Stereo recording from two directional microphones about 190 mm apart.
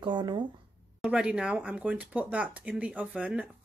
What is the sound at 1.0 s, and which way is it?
Speech, 5° right (ahead or behind).